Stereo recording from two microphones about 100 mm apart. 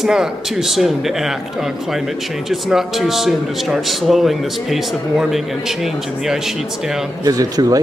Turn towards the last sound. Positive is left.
turn(degrees=-35)  # may be behind; listen again after turning